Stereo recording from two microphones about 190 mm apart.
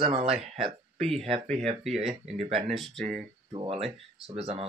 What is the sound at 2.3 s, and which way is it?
Speech, 30° right (ahead or behind).